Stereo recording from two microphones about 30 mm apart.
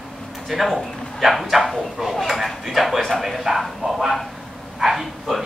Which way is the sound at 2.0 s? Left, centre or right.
Centre.